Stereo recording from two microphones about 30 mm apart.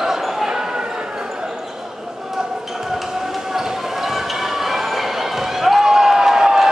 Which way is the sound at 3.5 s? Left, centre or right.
Centre.